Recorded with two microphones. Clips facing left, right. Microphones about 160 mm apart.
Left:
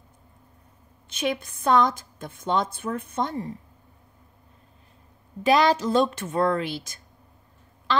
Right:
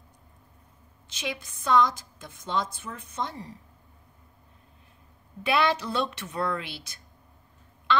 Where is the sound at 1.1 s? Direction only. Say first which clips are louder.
Left 8 dB; 55° left (ahead or behind).